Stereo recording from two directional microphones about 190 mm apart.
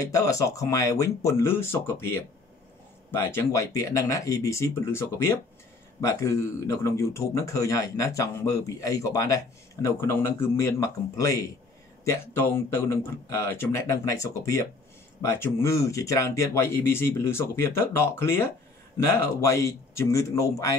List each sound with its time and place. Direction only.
0.0 s a man's voice: 15° left (ahead or behind)